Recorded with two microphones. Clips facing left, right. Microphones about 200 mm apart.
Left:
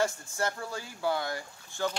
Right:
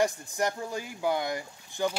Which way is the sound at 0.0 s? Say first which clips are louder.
Right 3 dB; 15° right (ahead or behind).